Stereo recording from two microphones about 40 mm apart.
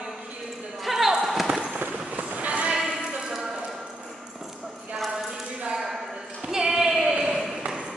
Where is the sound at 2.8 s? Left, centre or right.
Centre.